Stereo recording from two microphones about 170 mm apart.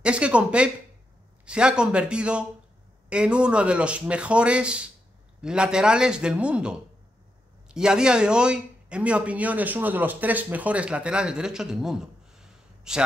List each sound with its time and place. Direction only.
0.0 s a man's voice: 5° right (ahead or behind)